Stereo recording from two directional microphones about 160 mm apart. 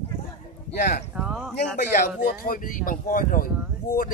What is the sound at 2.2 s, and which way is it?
Speech, 60° left (ahead or behind).